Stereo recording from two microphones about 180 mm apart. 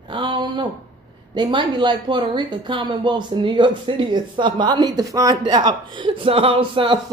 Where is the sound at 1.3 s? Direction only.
25° right (ahead or behind).